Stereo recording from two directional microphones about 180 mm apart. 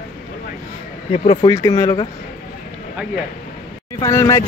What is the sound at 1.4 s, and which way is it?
Speech, 20° left (ahead or behind).